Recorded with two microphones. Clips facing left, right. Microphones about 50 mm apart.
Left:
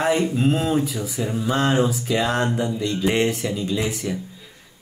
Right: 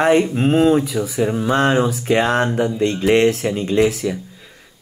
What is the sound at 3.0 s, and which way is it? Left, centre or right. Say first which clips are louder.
Speech: right 6 dB; right.